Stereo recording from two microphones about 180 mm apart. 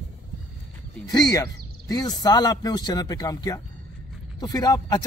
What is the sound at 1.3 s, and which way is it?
Speech, 20° left (ahead or behind).